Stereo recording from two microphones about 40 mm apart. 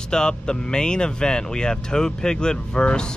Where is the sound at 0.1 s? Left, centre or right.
Centre.